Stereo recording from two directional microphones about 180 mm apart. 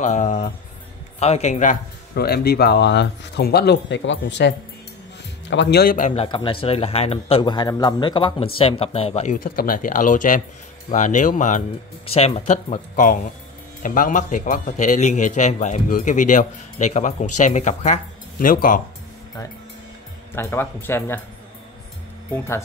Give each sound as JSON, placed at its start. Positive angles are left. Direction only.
{"t": 0.0, "sound": "a man's voice", "side_deg": 45}
{"t": 6.2, "sound": "a man's voice", "side_deg": 30}
{"t": 20.3, "sound": "speech", "side_deg": 10}